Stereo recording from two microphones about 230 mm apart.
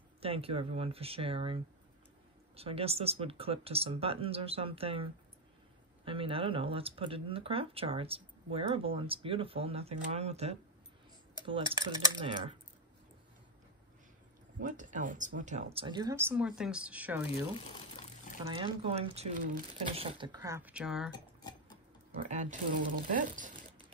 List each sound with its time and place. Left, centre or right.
0.2 s speech: right
11.7 s speech: centre
14.6 s speech: right; by 17.3 s centre
17.6 s speech: left
18.5 s speech: right; by 21.1 s centre
22.3 s speech: right